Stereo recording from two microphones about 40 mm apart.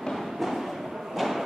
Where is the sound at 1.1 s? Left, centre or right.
Centre.